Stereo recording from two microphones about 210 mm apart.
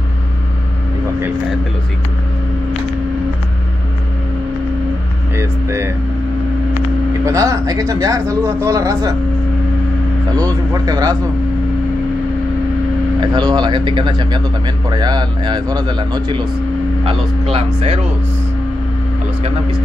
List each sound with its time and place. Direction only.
5.3 s vehicle: 15° right (ahead or behind)
7.2 s speech: 15° right (ahead or behind)
10.3 s speech: 15° right (ahead or behind)
13.2 s a man's voice: 20° right (ahead or behind)
17.7 s a man's voice: 25° right (ahead or behind)